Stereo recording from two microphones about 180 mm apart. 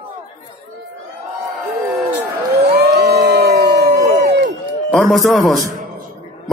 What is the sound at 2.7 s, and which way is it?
Crowd, 65° right (ahead or behind).